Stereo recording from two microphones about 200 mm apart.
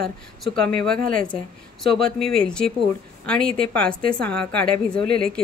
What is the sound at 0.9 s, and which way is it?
Speech, 45° right (ahead or behind).